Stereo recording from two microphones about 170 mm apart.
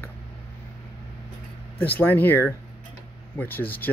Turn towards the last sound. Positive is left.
turn(degrees=10)  # may be behind; listen again after turning